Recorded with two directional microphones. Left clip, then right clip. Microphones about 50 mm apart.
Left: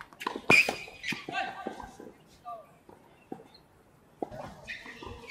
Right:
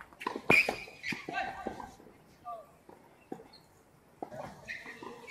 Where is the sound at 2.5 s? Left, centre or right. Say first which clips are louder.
Left 1 dB; left.